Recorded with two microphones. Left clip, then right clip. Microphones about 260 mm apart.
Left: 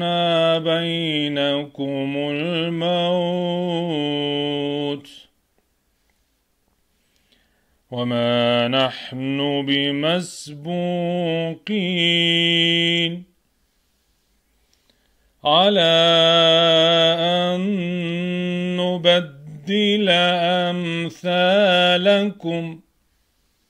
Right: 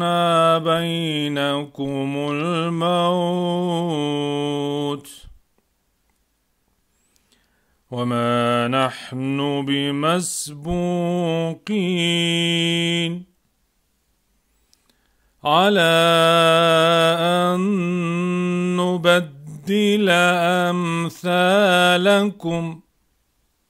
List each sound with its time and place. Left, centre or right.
0.0 s mantra: right
7.9 s mantra: centre
15.4 s mantra: right